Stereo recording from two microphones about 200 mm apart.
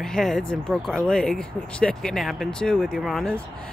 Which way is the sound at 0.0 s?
Centre (ahead or behind).